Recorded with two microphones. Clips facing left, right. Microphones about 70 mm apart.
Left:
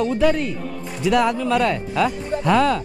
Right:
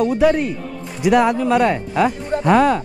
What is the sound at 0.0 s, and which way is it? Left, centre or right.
Speech, centre.